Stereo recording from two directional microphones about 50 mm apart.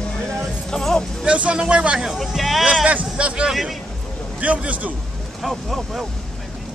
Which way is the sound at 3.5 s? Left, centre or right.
Centre.